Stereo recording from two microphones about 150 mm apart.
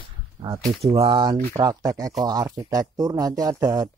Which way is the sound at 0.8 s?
35° right (ahead or behind).